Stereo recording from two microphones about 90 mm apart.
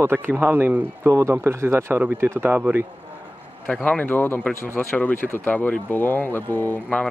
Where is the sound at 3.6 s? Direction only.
15° left (ahead or behind).